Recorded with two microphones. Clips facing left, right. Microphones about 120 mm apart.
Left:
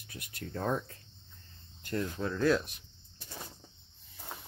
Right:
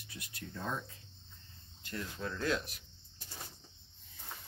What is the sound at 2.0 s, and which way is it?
Speech, 35° left (ahead or behind).